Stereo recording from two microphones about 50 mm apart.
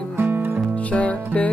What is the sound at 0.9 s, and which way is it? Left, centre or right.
Music, left.